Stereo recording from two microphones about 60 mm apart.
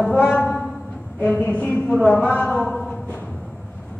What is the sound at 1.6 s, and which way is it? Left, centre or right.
A man's voice, left.